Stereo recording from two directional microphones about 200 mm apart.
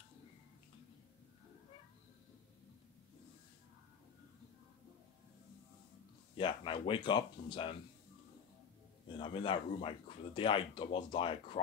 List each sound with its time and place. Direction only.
6.3 s speech: 25° left (ahead or behind)
9.0 s speech: 25° left (ahead or behind)